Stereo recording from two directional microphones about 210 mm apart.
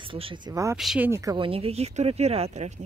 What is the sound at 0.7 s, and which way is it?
Speech, 5° right (ahead or behind).